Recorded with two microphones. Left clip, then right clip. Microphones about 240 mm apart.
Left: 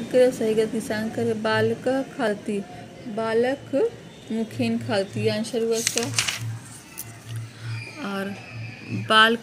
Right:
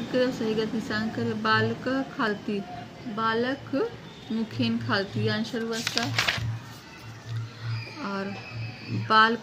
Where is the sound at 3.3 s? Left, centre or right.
Centre.